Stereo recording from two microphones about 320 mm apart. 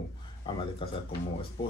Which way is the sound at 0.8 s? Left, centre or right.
Centre.